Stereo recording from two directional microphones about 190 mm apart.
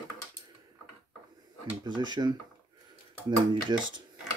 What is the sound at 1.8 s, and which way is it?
Speech, 25° right (ahead or behind).